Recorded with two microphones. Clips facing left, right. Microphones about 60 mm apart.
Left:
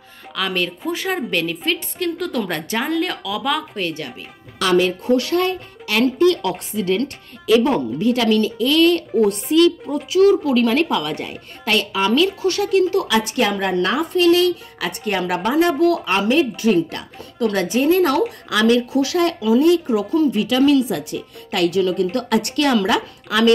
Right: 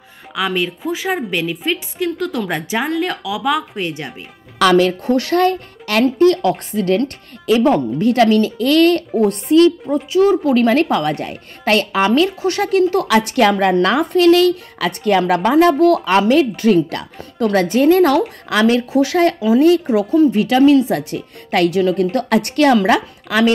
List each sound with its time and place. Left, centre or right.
0.4 s a woman's voice: centre
4.6 s speech: right
5.1 s a woman's voice: right
6.0 s a woman's voice: right
9.2 s a woman's voice: right
13.1 s speech: right
15.0 s speech: right
16.1 s speech: right
17.2 s a woman's voice: right
18.5 s speech: right